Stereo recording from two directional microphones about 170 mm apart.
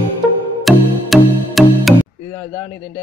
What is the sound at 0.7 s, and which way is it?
Music, centre (ahead or behind).